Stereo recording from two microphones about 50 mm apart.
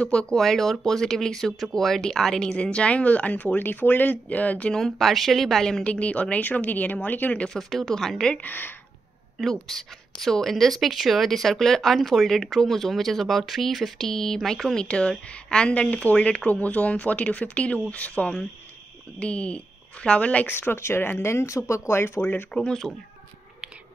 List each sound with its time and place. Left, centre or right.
0.0 s a woman's voice: centre
0.4 s a woman's voice: centre; by 4.7 s left
4.7 s a woman's voice: centre
5.9 s speech: left
7.4 s a woman's voice: centre
8.4 s speech: left
9.4 s a woman's voice: centre
14.0 s a woman's voice: centre; by 20.4 s left
20.4 s speech: left
22.7 s speech: centre